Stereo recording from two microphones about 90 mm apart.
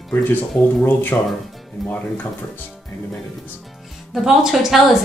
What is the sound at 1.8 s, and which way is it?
Speech, centre (ahead or behind).